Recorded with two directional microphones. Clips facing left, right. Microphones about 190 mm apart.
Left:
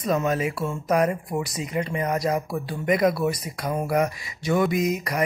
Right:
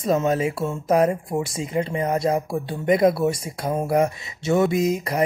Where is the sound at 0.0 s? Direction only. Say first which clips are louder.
Right 3 dB; 25° right (ahead or behind).